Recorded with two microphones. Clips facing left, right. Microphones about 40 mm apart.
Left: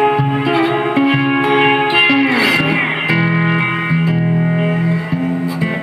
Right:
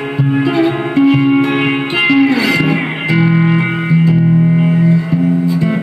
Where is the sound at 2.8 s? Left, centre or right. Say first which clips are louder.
Right 1 dB; centre.